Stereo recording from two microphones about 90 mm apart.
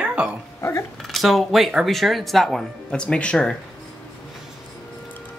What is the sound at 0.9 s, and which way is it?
Speech, centre (ahead or behind).